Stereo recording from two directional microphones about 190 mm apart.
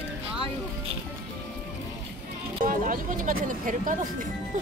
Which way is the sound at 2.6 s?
45° right (ahead or behind).